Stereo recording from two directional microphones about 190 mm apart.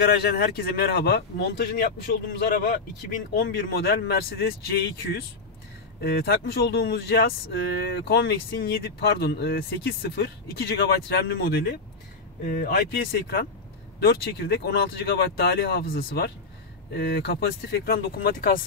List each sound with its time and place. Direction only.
0.0 s speech: 60° left (ahead or behind)
1.9 s speech: 50° left (ahead or behind)
5.9 s speech: 60° left (ahead or behind)